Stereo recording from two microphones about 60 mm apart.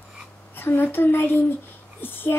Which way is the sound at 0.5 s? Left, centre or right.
Left.